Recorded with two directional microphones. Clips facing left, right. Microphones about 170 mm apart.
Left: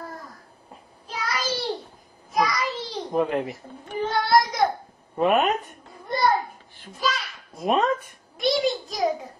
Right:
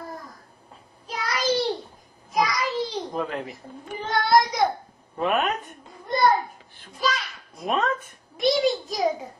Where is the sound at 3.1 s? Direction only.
15° left (ahead or behind).